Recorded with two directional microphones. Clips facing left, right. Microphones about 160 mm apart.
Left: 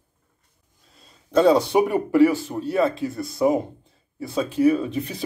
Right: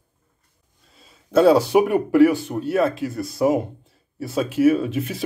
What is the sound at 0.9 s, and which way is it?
Speech, 5° right (ahead or behind).